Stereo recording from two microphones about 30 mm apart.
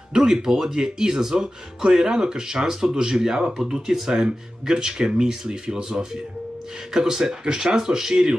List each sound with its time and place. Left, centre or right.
0.1 s speech: centre